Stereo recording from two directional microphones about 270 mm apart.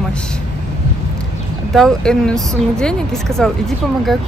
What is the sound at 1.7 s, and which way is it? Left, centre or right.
Speech, centre.